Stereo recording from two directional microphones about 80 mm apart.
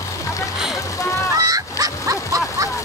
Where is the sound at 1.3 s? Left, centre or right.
Right.